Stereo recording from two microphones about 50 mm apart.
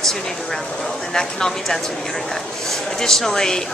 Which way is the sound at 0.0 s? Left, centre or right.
Centre.